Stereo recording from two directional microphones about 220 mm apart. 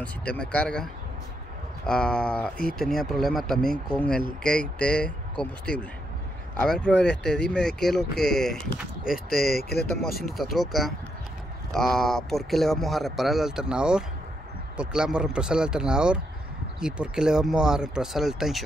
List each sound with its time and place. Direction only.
0.3 s speech: 5° left (ahead or behind)
1.9 s speech: 5° left (ahead or behind)
9.5 s speech: 45° left (ahead or behind)
10.1 s speech: centre (ahead or behind)